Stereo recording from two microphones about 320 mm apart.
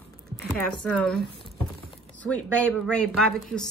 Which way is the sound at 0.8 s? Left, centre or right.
Centre.